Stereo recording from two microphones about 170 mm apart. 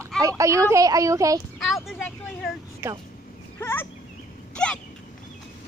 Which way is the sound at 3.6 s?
15° left (ahead or behind).